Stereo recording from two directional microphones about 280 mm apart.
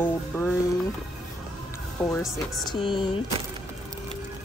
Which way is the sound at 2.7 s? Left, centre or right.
Centre.